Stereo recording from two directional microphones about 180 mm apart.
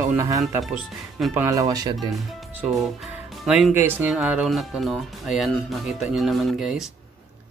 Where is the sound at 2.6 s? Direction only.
5° right (ahead or behind).